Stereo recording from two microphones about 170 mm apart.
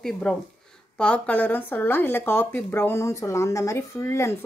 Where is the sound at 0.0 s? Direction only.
5° left (ahead or behind).